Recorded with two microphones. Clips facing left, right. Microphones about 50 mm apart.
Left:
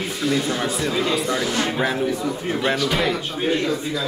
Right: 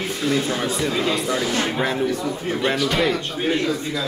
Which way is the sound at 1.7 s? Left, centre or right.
Centre.